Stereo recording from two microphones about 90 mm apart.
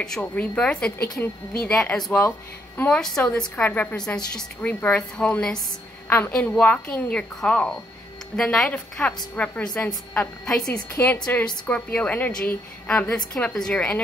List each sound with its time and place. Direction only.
0.0 s a woman's voice: 10° left (ahead or behind)
6.0 s a woman's voice: 25° left (ahead or behind)
6.6 s a woman's voice: 15° left (ahead or behind)